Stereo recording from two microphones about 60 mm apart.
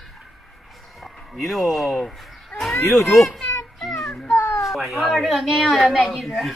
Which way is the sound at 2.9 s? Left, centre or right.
Centre.